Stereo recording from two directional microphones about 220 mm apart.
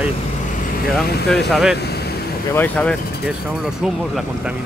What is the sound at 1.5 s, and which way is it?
Speech, centre (ahead or behind).